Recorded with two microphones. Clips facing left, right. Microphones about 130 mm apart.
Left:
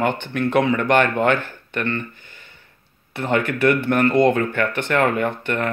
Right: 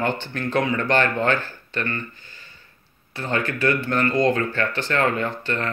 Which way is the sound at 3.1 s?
20° left (ahead or behind).